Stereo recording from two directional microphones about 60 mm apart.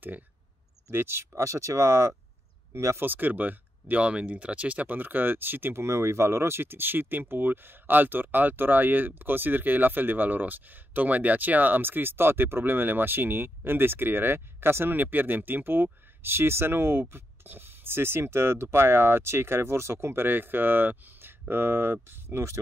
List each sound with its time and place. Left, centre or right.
0.8 s speech: right
1.4 s speech: right
3.0 s speech: right